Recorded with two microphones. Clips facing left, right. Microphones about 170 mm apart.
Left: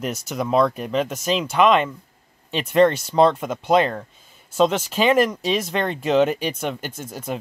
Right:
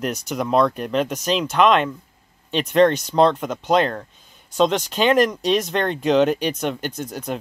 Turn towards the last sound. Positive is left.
turn(degrees=5)  # may be behind; listen again after turning